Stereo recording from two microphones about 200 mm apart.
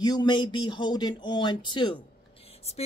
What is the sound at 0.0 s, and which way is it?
Speech, 20° left (ahead or behind).